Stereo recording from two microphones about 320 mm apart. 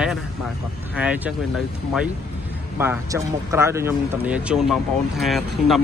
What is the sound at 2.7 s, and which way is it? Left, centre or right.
Speech, centre.